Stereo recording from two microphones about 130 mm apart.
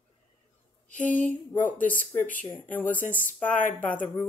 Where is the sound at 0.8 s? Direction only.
80° left.